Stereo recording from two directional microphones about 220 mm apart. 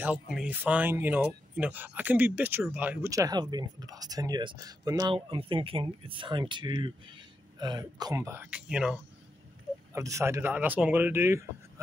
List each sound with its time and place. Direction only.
0.0 s speech: 5° right (ahead or behind)